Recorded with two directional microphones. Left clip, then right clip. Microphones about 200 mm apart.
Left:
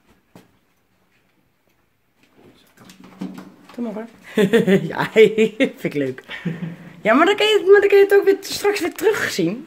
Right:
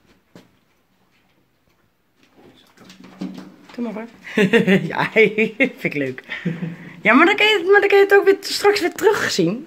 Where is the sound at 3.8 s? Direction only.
5° left (ahead or behind).